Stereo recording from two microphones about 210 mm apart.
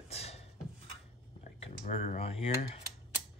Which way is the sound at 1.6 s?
35° left (ahead or behind).